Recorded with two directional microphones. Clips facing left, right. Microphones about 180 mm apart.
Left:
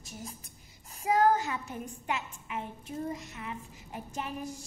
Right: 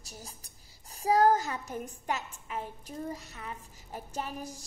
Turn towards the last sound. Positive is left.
turn(degrees=-40)  # may be behind; listen again after turning